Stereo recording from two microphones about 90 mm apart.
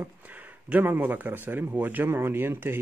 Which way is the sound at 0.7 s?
20° right (ahead or behind).